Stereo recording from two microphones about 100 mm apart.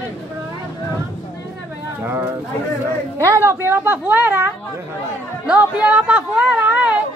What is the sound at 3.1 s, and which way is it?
A woman's voice, 30° right (ahead or behind).